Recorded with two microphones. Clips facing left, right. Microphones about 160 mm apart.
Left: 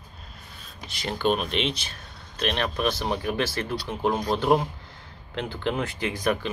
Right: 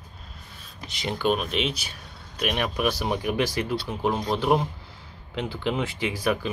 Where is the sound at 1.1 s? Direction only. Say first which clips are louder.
Even; 5° right (ahead or behind).